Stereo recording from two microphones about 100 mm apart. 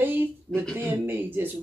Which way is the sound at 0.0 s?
20° right (ahead or behind).